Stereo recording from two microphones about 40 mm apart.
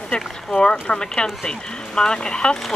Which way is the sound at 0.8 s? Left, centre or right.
Centre.